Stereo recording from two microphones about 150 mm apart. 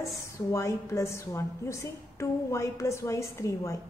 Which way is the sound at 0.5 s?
20° left (ahead or behind).